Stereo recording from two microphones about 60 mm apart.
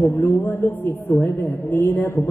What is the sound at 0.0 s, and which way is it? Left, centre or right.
A woman's voice, left.